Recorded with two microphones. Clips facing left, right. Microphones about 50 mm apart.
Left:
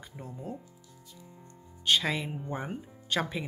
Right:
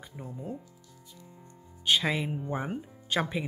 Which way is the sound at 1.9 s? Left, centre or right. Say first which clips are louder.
Right 1 dB; centre.